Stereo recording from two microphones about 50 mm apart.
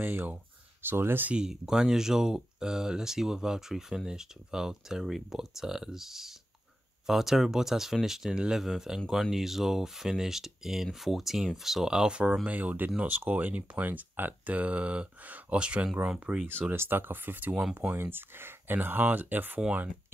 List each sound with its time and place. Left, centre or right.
0.0 s speech: right
1.3 s speech: centre
12.4 s speech: right; by 16.4 s centre
16.7 s speech: right